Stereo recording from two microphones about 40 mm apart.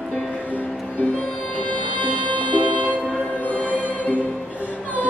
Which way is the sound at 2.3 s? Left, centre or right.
Left.